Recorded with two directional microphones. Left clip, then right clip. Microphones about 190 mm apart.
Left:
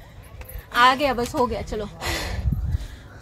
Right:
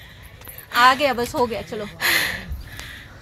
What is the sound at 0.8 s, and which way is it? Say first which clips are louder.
Speech: right 3 dB; 10° right (ahead or behind).